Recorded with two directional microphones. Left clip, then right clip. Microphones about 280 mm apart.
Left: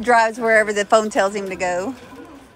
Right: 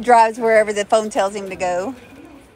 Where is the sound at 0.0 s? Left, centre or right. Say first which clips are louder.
Right 3 dB; centre.